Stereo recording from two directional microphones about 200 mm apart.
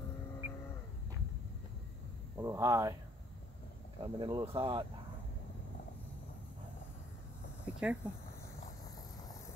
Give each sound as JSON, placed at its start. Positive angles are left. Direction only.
{"t": 2.3, "sound": "speech", "side_deg": -15}
{"t": 4.0, "sound": "speech", "side_deg": -20}
{"t": 7.6, "sound": "a sound", "side_deg": -5}